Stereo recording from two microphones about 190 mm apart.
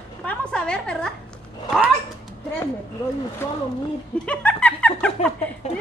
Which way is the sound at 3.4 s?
10° left (ahead or behind).